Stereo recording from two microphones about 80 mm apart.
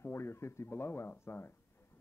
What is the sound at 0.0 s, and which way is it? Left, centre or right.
Speech, left.